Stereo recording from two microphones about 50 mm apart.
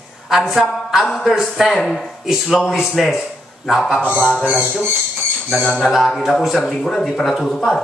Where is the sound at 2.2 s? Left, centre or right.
Centre.